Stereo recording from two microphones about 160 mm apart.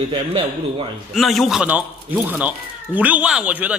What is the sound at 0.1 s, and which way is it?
Speech, 35° right (ahead or behind).